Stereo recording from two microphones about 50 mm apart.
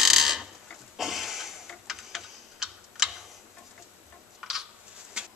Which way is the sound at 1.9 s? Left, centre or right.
Centre.